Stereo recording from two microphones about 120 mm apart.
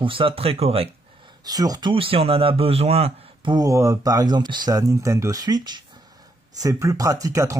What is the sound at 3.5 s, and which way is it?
Speech, 30° right (ahead or behind).